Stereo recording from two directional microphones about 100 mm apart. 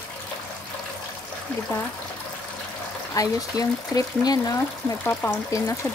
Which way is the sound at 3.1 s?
35° left (ahead or behind).